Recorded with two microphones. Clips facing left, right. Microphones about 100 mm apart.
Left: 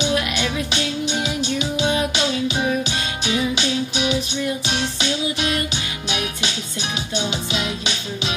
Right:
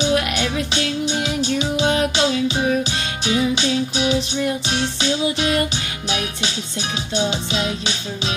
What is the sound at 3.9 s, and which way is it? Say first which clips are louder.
Music: right 2 dB; 35° right (ahead or behind).